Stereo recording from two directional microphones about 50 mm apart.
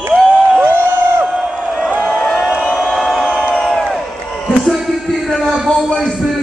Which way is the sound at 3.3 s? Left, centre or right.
Centre.